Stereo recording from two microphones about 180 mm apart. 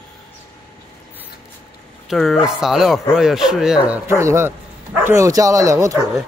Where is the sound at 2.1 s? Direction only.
Centre (ahead or behind); by 6.3 s 20° right (ahead or behind).